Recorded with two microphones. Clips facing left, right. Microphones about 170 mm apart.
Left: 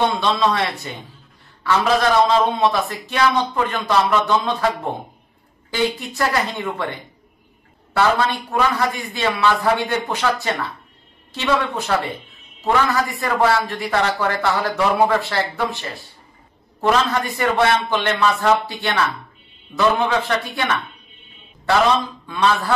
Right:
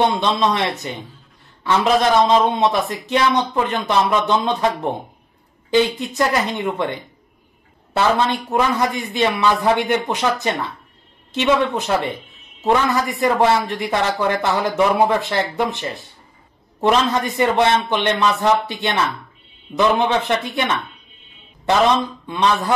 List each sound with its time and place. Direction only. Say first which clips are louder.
0.2 s speech: right 1 dB; 20° right (ahead or behind)
8.5 s speech: right 1 dB; 20° right (ahead or behind)
22.2 s speech: right 1 dB; 20° right (ahead or behind)